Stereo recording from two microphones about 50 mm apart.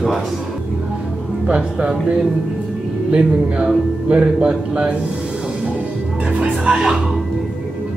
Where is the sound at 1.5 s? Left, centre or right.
Centre.